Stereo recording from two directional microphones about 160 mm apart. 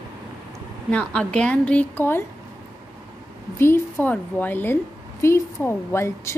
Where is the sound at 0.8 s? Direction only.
5° left (ahead or behind).